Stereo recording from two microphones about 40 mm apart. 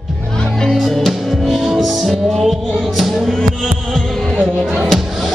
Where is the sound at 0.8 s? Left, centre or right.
Centre.